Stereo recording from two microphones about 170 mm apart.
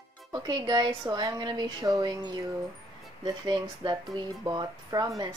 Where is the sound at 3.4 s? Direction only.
25° right (ahead or behind).